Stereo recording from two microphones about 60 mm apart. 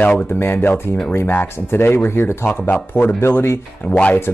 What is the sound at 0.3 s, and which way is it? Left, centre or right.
Speech, left.